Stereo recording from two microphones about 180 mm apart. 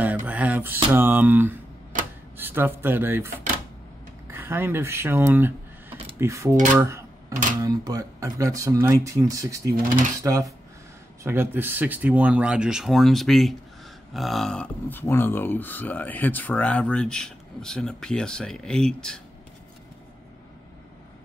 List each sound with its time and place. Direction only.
0.0 s a sound: 10° right (ahead or behind)
0.8 s speech: 10° right (ahead or behind)
4.3 s speech: 10° right (ahead or behind)
6.5 s speech: 45° right (ahead or behind)
6.8 s cash register: 15° right (ahead or behind)
7.6 s speech: 20° right (ahead or behind); by 19.2 s 5° left (ahead or behind)